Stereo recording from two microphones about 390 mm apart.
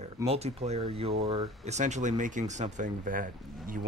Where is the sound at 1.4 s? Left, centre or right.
Centre.